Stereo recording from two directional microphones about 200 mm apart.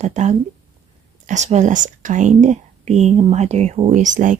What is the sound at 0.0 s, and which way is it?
Speech, 35° right (ahead or behind).